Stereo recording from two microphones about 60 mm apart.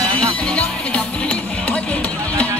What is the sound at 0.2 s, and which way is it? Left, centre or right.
Music, centre.